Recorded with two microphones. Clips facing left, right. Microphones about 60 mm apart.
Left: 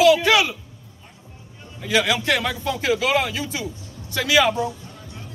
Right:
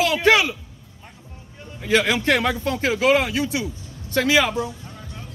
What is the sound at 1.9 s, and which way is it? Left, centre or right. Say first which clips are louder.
Speech: right 2 dB; right.